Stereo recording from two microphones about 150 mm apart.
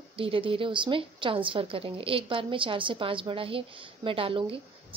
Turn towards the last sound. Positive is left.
turn(degrees=-35)  # may be behind; listen again after turning